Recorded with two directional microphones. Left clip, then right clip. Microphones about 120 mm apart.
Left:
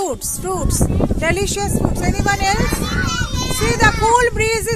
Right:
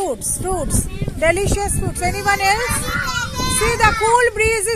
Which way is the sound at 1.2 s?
Centre (ahead or behind).